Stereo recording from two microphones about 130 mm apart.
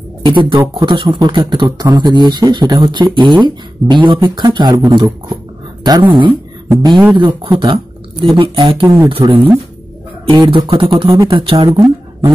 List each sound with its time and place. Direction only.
0.2 s speech: 40° right (ahead or behind)
8.8 s speech: 25° right (ahead or behind)
9.1 s speech: 45° right (ahead or behind)